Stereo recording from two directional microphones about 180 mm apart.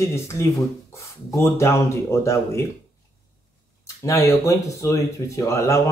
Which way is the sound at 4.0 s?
15° left (ahead or behind).